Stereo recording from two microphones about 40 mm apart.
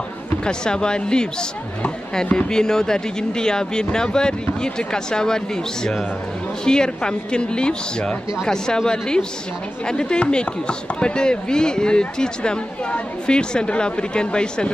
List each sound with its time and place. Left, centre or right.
0.5 s speech: left
2.3 s speech: centre
6.6 s speech: centre